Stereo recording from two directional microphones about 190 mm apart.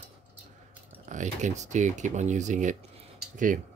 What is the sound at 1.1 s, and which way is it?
Speech, 40° right (ahead or behind).